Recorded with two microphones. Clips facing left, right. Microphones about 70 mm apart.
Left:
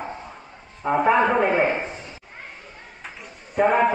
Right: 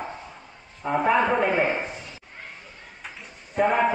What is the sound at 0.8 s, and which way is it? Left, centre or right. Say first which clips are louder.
A man's voice: left 3 dB; centre.